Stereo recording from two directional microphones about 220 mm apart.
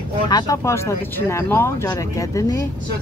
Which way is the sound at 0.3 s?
15° left (ahead or behind).